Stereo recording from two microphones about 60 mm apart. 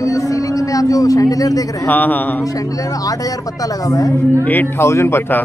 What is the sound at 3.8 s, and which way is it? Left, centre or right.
Speech, left.